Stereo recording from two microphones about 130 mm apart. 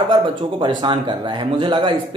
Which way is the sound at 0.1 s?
40° right (ahead or behind).